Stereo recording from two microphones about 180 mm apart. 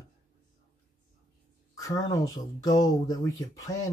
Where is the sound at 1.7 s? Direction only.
20° left (ahead or behind).